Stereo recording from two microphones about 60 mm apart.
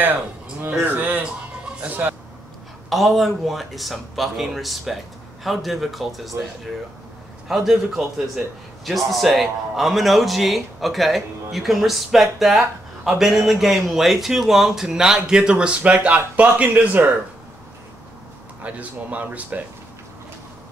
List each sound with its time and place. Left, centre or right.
0.8 s speech: right
2.9 s a man's voice: centre
8.8 s a man's voice: centre; by 17.1 s right
18.6 s speech: right